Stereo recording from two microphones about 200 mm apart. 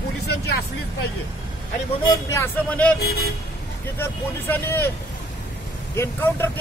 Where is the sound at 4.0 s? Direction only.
10° left (ahead or behind).